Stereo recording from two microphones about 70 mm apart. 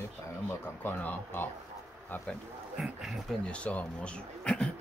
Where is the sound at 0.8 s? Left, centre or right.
Left.